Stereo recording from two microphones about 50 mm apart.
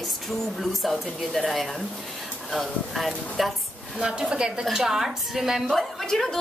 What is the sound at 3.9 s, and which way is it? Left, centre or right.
A woman's voice, centre.